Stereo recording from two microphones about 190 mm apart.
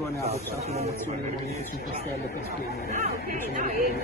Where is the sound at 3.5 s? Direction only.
50° right (ahead or behind).